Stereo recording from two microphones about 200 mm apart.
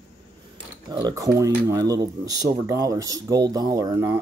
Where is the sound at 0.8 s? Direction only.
20° right (ahead or behind).